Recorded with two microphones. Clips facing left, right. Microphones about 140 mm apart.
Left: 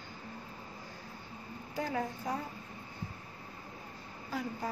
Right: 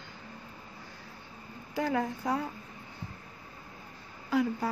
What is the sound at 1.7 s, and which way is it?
Speech, 75° right (ahead or behind).